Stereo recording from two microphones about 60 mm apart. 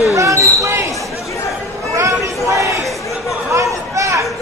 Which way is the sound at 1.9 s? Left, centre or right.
Right.